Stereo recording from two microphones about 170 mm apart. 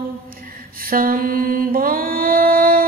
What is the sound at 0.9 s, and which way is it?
Mantra, 60° right (ahead or behind).